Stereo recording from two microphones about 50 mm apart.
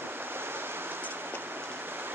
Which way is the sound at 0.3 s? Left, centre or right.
Right.